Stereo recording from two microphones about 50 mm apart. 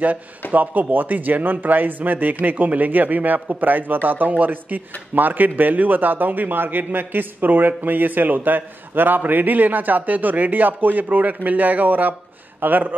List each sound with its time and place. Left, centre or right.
0.0 s a man's voice: right